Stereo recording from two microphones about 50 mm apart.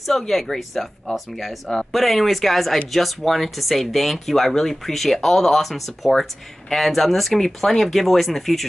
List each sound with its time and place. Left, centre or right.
0.0 s speech: centre